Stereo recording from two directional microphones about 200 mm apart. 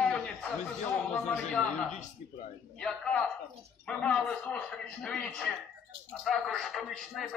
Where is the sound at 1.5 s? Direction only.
5° left (ahead or behind).